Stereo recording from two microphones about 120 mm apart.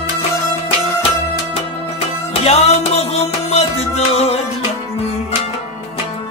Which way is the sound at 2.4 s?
60° left (ahead or behind).